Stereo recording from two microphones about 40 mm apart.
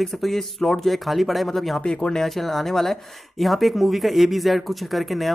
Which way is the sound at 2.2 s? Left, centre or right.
Centre.